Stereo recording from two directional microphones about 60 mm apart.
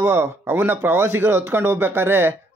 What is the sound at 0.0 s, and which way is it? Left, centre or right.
Speech, right.